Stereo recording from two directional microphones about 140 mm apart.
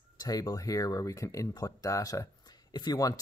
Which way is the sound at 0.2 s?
25° left (ahead or behind).